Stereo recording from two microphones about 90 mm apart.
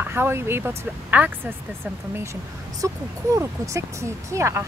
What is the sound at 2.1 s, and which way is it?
Speech, 35° right (ahead or behind).